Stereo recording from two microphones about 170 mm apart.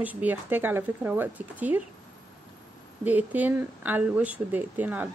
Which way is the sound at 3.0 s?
10° right (ahead or behind).